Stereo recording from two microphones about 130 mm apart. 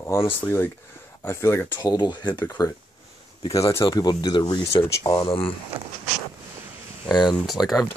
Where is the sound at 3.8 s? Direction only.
30° left (ahead or behind).